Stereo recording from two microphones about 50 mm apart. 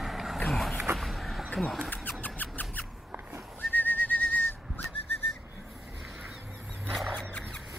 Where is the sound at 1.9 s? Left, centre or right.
Left.